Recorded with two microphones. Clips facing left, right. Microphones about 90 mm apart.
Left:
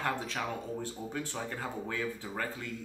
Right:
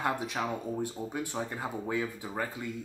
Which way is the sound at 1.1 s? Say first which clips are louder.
Right 2 dB; 15° right (ahead or behind).